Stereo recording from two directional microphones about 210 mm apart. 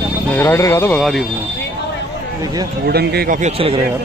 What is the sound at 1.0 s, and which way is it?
Speech, centre (ahead or behind).